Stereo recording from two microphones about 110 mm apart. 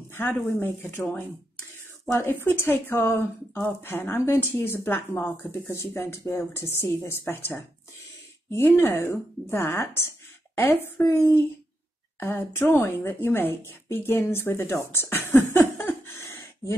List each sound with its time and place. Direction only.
0.6 s speech: 20° left (ahead or behind)
2.0 s speech: 20° left (ahead or behind)
16.1 s a sound: 25° left (ahead or behind)